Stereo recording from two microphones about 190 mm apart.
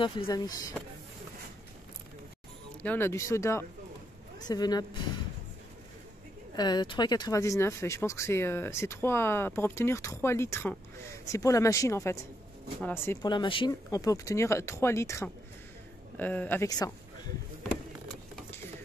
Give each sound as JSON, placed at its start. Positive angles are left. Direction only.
{"t": 0.0, "sound": "speech", "side_deg": 25}
{"t": 2.8, "sound": "speech", "side_deg": 10}
{"t": 6.5, "sound": "speech", "side_deg": 20}
{"t": 13.3, "sound": "speech", "side_deg": 25}